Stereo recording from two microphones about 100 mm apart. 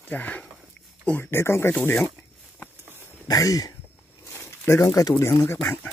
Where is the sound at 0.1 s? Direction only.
15° left (ahead or behind).